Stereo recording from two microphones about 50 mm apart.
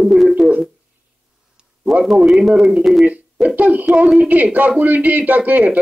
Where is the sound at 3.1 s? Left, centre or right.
Right.